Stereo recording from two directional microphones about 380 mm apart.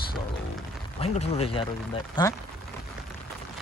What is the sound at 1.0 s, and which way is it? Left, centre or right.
Speech, centre.